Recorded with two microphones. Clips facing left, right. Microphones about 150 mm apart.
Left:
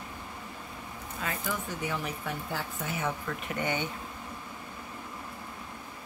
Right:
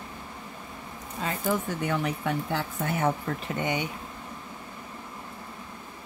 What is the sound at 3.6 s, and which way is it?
Speech, 20° right (ahead or behind).